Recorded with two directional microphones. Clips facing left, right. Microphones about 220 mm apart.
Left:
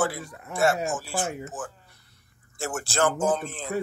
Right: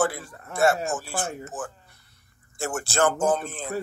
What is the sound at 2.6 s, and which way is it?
Speech, 50° right (ahead or behind).